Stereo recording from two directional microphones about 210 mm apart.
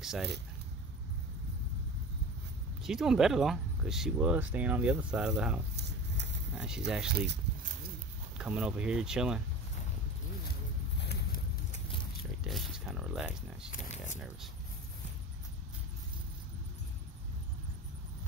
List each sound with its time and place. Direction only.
0.0 s speech: centre (ahead or behind)
2.8 s speech: centre (ahead or behind)
5.8 s a sound: 55° right (ahead or behind)
6.5 s speech: 5° right (ahead or behind)
7.1 s speech: 50° right (ahead or behind)
8.4 s speech: 5° right (ahead or behind)
11.0 s a sound: 50° left (ahead or behind)
11.7 s biting: 25° left (ahead or behind)
12.4 s speech: centre (ahead or behind)
13.7 s speech: 35° left (ahead or behind)